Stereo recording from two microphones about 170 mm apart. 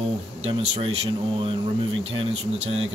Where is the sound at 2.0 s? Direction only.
35° right (ahead or behind).